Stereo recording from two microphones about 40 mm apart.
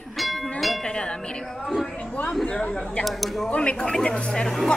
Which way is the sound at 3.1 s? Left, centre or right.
Centre.